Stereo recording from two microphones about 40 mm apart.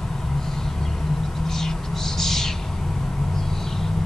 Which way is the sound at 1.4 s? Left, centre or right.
Centre.